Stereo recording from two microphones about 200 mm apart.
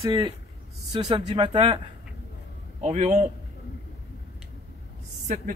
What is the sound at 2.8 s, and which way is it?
Speech, 35° right (ahead or behind).